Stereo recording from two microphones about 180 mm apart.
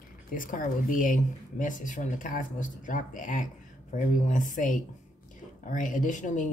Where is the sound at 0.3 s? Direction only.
50° left (ahead or behind).